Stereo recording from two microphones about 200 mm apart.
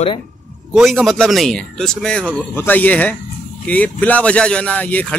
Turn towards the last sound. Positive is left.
turn(degrees=5)  # may be behind; listen again after turning